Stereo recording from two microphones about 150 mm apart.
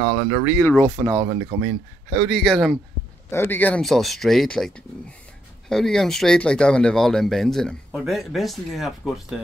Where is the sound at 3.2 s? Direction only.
15° left (ahead or behind).